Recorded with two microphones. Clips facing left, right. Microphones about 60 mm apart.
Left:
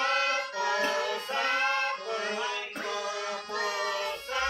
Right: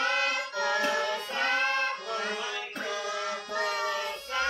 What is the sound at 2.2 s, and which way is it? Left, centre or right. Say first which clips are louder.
Music: left 1 dB; left.